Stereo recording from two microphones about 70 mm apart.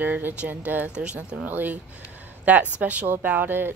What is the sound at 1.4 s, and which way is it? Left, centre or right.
A woman's voice, right.